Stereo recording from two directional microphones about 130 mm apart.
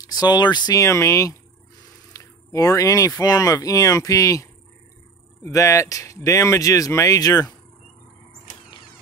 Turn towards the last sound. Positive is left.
turn(degrees=30)  # may be behind; listen again after turning